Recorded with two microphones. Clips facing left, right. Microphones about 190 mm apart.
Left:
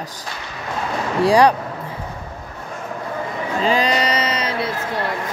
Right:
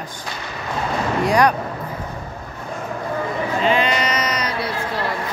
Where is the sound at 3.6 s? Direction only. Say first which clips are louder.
Left 1 dB; 35° left (ahead or behind).